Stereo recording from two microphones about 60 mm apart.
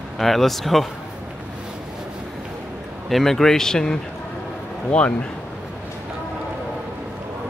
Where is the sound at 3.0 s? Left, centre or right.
Centre.